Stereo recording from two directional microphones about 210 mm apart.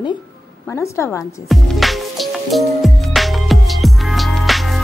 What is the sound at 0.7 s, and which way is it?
Speech, 15° left (ahead or behind).